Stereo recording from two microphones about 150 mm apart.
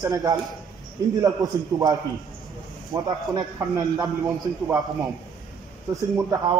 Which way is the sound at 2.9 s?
25° right (ahead or behind).